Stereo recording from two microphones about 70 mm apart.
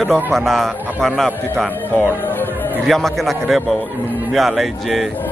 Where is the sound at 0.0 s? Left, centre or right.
Centre.